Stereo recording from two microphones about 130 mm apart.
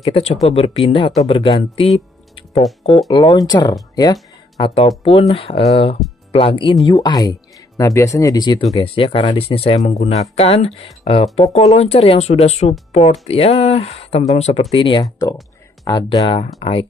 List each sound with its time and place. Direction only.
0.0 s speech: 50° left (ahead or behind)
3.1 s speech: 35° left (ahead or behind)
3.9 s a sound: 30° left (ahead or behind)
4.8 s speech: 45° left (ahead or behind)
9.8 s speech: 60° left (ahead or behind); by 16.2 s 30° left (ahead or behind)
16.2 s speech: 50° left (ahead or behind)